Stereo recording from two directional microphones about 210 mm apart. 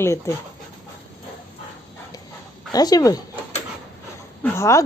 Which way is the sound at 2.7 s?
15° left (ahead or behind).